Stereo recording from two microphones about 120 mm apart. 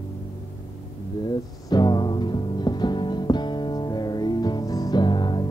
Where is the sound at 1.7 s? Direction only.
35° left (ahead or behind).